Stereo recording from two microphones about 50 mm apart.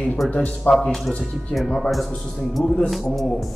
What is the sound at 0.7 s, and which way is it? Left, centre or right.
Speech, left.